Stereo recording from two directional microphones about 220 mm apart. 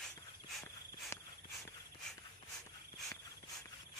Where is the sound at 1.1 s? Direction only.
10° left (ahead or behind).